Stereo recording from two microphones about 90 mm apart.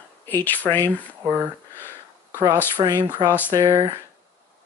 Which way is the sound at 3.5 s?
50° right (ahead or behind).